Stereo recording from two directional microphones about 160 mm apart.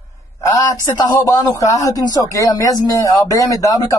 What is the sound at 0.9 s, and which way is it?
Speech, 25° left (ahead or behind).